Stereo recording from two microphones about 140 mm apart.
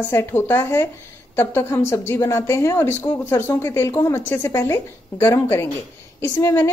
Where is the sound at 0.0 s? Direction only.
15° left (ahead or behind).